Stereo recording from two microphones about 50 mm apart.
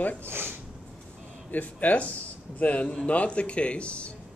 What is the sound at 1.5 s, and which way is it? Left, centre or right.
Speech, left.